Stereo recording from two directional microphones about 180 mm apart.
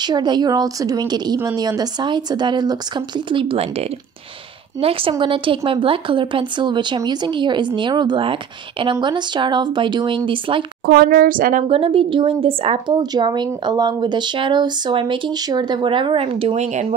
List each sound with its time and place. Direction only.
0.0 s a woman's voice: 25° right (ahead or behind)
4.8 s a woman's voice: 30° right (ahead or behind)
10.9 s a woman's voice: 60° right (ahead or behind)
11.6 s a woman's voice: 30° right (ahead or behind)